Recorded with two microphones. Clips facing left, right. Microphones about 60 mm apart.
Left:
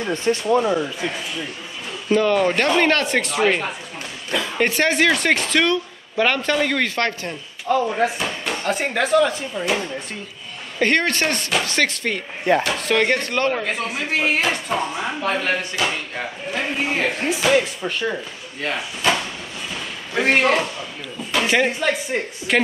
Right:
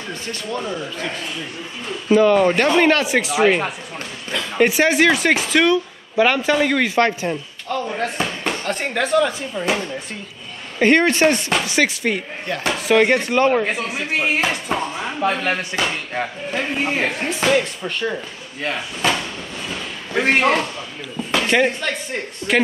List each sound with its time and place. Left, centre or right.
0.3 s speech: centre
2.0 s speech: centre
7.6 s speech: centre
10.8 s speech: centre
15.7 s speech: right
16.5 s speech: centre
20.2 s speech: centre